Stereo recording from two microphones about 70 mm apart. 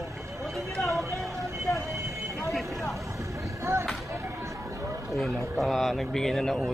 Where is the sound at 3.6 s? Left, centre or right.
Right.